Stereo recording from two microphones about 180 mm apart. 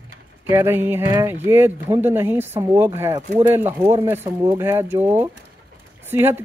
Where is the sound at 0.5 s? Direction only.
10° right (ahead or behind).